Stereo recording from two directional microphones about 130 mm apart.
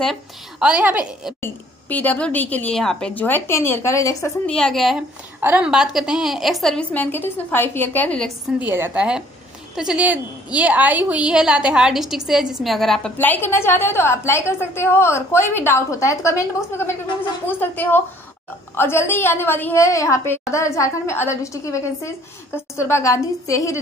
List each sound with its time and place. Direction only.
0.0 s a woman's voice: centre (ahead or behind)
1.4 s a woman's voice: 15° left (ahead or behind)
4.5 s a woman's voice: 5° left (ahead or behind)
5.4 s a woman's voice: 15° right (ahead or behind)
5.7 s a woman's voice: 5° right (ahead or behind)
8.5 s a woman's voice: 15° right (ahead or behind); by 13.1 s centre (ahead or behind)
13.2 s a woman's voice: 15° left (ahead or behind)